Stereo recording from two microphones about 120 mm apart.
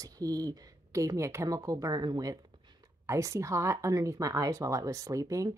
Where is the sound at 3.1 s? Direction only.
25° right (ahead or behind).